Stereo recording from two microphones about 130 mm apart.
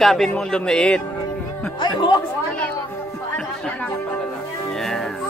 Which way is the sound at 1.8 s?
35° left (ahead or behind).